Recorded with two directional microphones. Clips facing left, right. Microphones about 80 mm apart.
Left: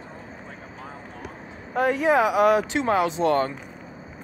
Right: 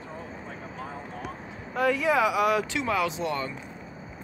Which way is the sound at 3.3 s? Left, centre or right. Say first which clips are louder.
Left 9 dB; left.